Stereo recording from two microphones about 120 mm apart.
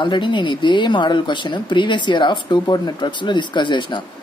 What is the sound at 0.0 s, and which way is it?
A woman's voice, 40° left (ahead or behind).